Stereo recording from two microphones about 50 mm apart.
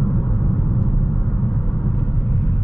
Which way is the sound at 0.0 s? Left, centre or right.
Left.